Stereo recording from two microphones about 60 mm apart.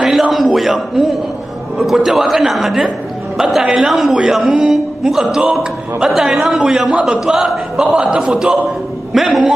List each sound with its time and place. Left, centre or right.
0.0 s a sound: centre
1.8 s a man's voice: centre
9.1 s a man's voice: centre